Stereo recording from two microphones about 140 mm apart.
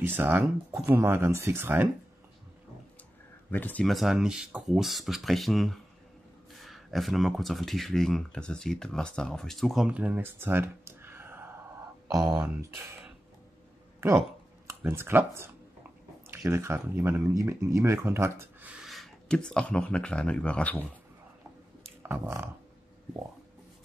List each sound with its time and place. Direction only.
0.0 s speech: 15° right (ahead or behind)
3.4 s speech: 15° left (ahead or behind)
3.8 s speech: centre (ahead or behind)
14.7 s speech: 20° right (ahead or behind)
18.8 s speech: centre (ahead or behind)
22.0 s a sound: 15° right (ahead or behind)